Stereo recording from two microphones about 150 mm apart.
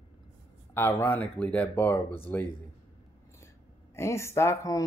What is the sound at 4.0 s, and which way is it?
Speech, 20° left (ahead or behind).